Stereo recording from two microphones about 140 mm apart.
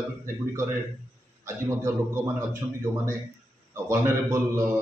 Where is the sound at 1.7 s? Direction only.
20° right (ahead or behind).